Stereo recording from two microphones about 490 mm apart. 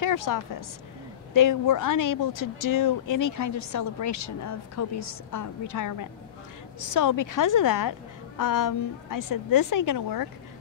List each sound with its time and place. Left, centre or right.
0.0 s speech: left